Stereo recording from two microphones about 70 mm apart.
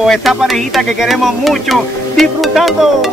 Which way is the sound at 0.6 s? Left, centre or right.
Centre.